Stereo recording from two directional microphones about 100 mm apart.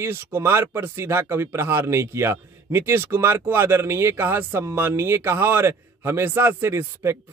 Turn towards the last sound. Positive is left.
turn(degrees=-25)  # may be behind; listen again after turning